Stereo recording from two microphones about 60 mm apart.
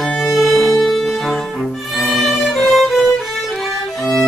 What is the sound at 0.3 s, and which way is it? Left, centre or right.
Music, centre.